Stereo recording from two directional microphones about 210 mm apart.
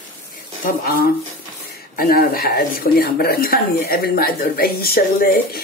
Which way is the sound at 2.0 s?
45° left (ahead or behind).